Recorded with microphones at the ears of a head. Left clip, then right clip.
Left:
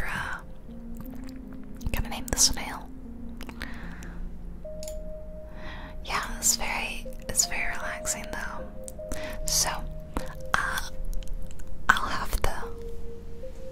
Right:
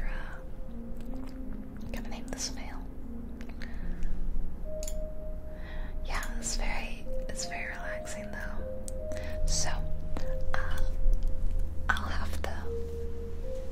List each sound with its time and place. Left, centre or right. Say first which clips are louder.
0.0 s a sound: left 12 dB; left
1.9 s whispering: left 8 dB; left
6.0 s whispering: left 9 dB; left